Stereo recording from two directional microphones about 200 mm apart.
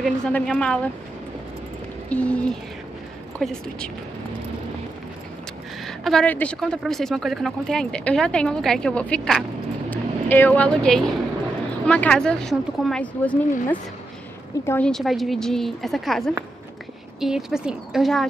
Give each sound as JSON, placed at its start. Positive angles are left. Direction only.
{"t": 0.0, "sound": "a woman's voice", "side_deg": 5}
{"t": 2.0, "sound": "a woman's voice", "side_deg": 5}
{"t": 5.9, "sound": "a woman's voice", "side_deg": 0}